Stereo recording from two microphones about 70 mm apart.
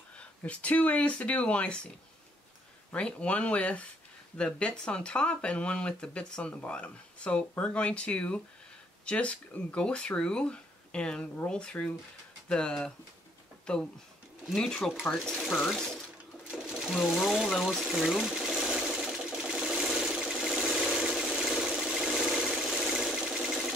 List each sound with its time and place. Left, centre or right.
0.4 s speech: centre
2.9 s speech: centre
15.4 s speech: centre
16.4 s sewing machine: centre
16.9 s speech: centre
18.2 s sewing machine: centre
22.5 s a sound: centre